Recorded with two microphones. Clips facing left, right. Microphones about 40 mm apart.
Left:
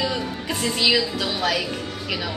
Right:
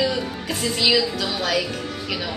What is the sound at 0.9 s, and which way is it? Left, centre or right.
Speech, centre.